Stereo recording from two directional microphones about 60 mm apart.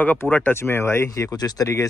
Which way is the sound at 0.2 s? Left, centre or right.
Left.